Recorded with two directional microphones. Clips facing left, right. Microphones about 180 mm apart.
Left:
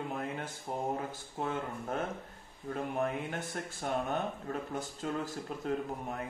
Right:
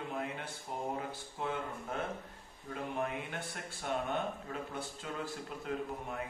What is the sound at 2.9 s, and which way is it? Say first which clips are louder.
Speech: left 3 dB; 45° left (ahead or behind).